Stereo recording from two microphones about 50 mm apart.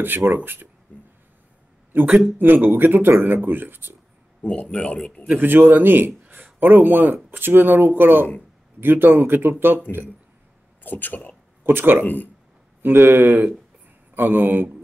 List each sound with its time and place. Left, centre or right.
0.0 s speech: right
0.9 s a sound: left
1.9 s speech: right
4.4 s speech: left
5.3 s speech: right
10.8 s speech: left
11.6 s speech: right
12.0 s speech: left
12.8 s speech: right